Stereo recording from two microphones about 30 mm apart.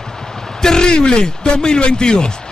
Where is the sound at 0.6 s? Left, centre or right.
Left.